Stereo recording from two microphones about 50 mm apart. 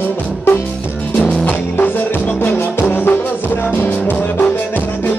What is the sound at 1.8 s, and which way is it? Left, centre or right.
Music, left.